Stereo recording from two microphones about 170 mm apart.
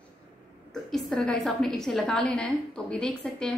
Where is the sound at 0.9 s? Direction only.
5° left (ahead or behind).